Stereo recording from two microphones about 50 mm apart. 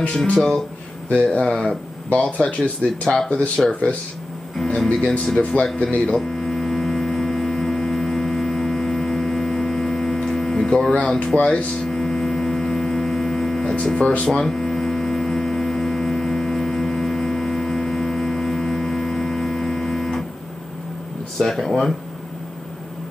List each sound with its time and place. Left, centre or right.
0.1 s speech: centre
4.6 s music: centre
5.4 s speech: left
6.1 s hum: centre
11.0 s speech: left
11.9 s hum: centre
21.4 s speech: centre